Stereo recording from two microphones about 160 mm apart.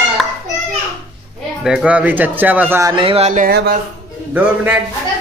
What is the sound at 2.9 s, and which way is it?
Speech, 35° right (ahead or behind).